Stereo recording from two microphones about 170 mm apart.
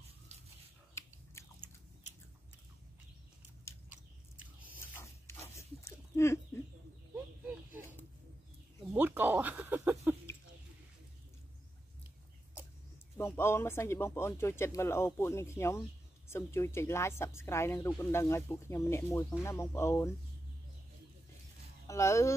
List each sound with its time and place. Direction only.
0.3 s pig: 40° right (ahead or behind)
1.4 s biting: 15° left (ahead or behind)
4.7 s a sound: 15° left (ahead or behind)
8.9 s a sound: 10° right (ahead or behind)
13.2 s speech: 15° left (ahead or behind)
21.8 s speech: 15° left (ahead or behind)